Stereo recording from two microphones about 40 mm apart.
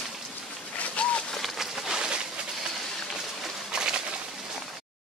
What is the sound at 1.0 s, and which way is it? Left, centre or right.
Bird, left.